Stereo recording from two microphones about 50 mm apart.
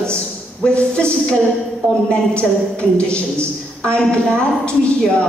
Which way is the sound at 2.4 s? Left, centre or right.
Left.